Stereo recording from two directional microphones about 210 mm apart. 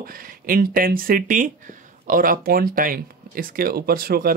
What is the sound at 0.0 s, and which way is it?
Speech, 45° right (ahead or behind).